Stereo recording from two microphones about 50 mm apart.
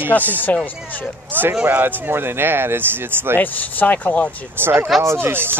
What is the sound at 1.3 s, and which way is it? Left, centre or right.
Speech, right.